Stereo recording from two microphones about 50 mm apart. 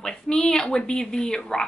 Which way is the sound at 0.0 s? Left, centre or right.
Centre.